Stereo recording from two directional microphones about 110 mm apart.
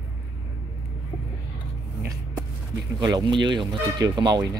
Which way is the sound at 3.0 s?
40° right (ahead or behind).